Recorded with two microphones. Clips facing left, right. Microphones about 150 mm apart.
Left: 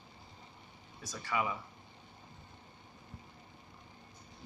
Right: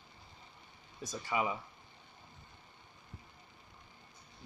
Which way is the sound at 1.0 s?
20° right (ahead or behind).